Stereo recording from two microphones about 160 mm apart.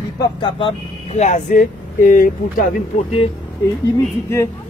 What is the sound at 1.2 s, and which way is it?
Speech, 50° left (ahead or behind).